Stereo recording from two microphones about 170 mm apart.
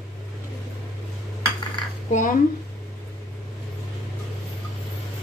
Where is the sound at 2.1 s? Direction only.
50° left (ahead or behind).